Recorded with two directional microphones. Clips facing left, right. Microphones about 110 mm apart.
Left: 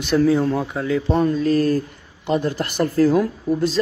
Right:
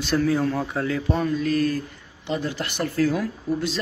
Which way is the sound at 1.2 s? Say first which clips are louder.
Left 4 dB; 35° left (ahead or behind).